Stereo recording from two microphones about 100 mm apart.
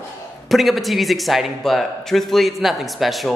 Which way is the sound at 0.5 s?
Centre (ahead or behind).